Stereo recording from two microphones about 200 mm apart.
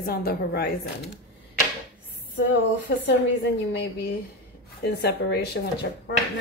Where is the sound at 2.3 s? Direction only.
65° left (ahead or behind).